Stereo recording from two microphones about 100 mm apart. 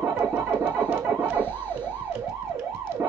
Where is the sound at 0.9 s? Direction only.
20° right (ahead or behind).